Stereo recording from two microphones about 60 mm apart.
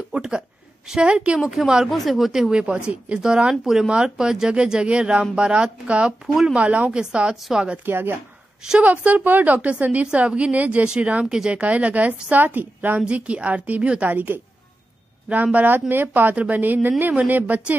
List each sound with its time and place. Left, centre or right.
0.1 s speech: centre
1.4 s a woman's voice: centre
6.2 s a woman's voice: centre
6.5 s a woman's voice: right
7.8 s a woman's voice: right
8.8 s a woman's voice: right
14.0 s a woman's voice: right